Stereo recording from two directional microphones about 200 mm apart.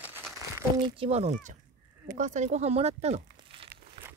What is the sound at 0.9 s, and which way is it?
Speech, 30° right (ahead or behind).